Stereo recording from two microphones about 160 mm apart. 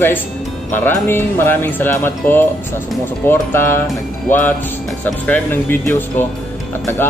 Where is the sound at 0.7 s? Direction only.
15° left (ahead or behind).